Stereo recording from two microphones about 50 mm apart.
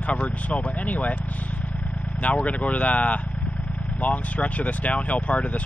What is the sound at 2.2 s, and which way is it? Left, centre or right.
Speech, left.